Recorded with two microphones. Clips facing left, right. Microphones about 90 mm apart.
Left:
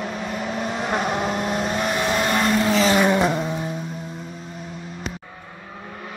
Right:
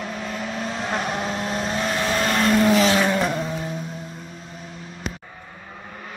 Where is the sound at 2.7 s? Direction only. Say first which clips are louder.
Left 1 dB; centre (ahead or behind).